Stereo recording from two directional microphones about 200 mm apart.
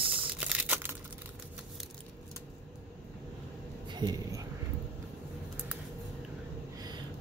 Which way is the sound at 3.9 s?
20° right (ahead or behind).